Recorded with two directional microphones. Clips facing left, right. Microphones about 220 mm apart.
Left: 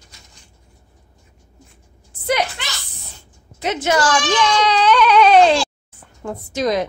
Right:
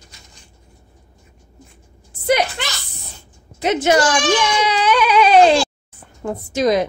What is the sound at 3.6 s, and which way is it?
A woman's voice, 15° right (ahead or behind).